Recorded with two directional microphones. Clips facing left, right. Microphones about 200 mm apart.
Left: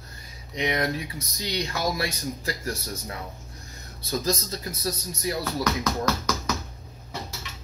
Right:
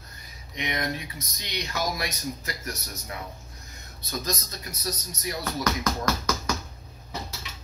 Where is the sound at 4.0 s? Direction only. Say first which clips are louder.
Left 5 dB; 30° left (ahead or behind).